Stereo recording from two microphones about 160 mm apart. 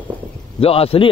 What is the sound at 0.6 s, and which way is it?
Speech, 35° left (ahead or behind).